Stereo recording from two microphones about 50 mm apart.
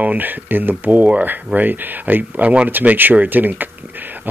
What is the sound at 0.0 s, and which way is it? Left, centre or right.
Speech, right.